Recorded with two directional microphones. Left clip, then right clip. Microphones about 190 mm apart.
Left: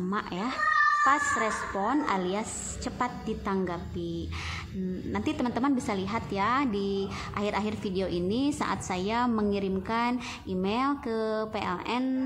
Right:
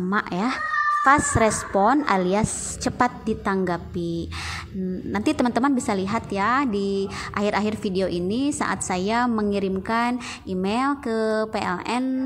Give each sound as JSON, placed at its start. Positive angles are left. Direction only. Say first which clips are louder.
{"t": 0.1, "sound": "a woman's voice", "louder": "right 9 dB", "side_deg": -25}